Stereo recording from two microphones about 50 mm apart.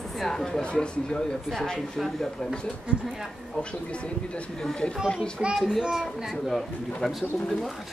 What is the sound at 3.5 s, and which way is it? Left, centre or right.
Speech, left.